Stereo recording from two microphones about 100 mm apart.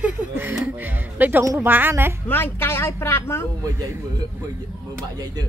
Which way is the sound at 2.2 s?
20° left (ahead or behind).